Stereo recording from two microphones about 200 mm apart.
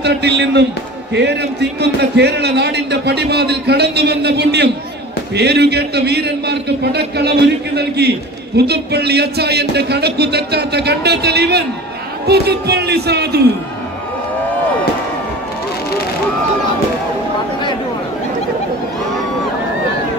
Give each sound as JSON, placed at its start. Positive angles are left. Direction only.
{"t": 0.0, "sound": "a man's voice", "side_deg": -55}